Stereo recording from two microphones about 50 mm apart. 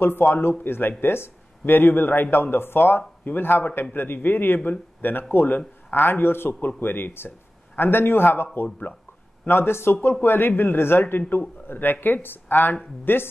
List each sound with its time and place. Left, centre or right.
0.0 s speech: left
9.5 s speech: left